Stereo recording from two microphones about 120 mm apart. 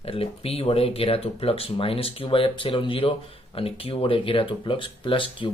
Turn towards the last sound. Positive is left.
turn(degrees=45)  # may be behind; listen again after turning